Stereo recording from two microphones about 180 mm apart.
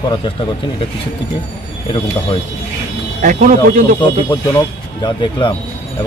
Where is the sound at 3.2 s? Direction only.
45° right (ahead or behind).